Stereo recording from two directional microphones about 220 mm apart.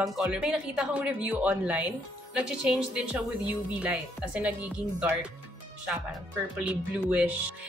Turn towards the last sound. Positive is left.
turn(degrees=-5)  # may be behind; listen again after turning